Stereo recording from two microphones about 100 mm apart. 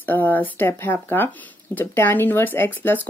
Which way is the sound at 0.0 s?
20° left (ahead or behind).